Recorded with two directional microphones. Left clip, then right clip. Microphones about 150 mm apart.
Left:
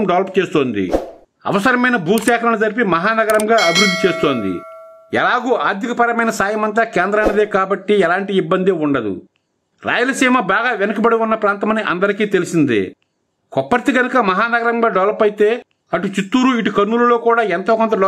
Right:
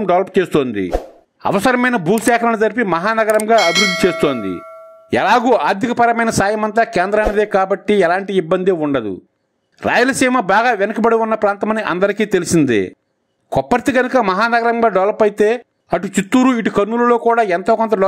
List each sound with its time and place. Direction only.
0.0 s a man's voice: 35° right (ahead or behind)
3.5 s speech: centre (ahead or behind)
4.0 s a man's voice: 40° right (ahead or behind)
4.4 s speech: centre (ahead or behind)
5.1 s a man's voice: 40° right (ahead or behind)